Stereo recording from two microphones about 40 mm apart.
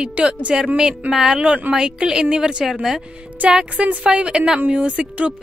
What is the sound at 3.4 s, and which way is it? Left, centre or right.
Speech, right.